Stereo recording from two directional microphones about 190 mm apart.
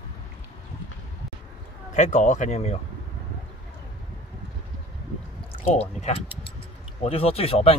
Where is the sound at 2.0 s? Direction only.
40° left (ahead or behind).